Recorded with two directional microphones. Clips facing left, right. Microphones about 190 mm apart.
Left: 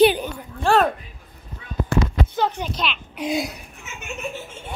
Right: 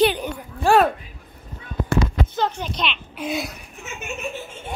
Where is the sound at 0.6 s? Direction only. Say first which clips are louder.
Right 2 dB; 10° right (ahead or behind).